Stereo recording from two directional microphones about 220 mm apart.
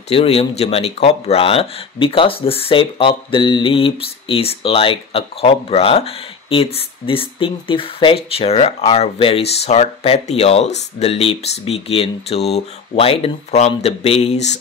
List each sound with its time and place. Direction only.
0.1 s speech: 25° left (ahead or behind)